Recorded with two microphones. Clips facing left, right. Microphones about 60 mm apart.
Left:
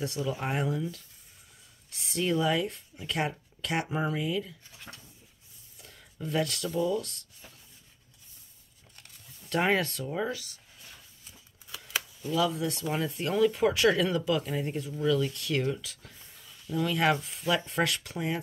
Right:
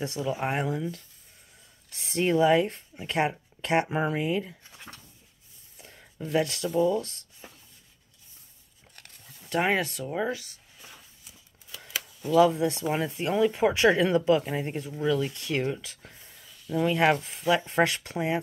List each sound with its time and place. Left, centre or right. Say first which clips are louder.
0.0 s speech: right 3 dB; right
5.8 s a sound: right 4 dB; right
6.4 s speech: right 4 dB; right
9.5 s speech: right 1 dB; centre
10.0 s speech: right 2 dB; right
12.4 s speech: right 8 dB; right